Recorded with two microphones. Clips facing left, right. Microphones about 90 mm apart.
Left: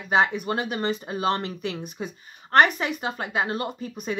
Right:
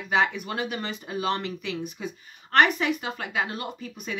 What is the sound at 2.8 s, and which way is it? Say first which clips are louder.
Speech: even; 35° left (ahead or behind).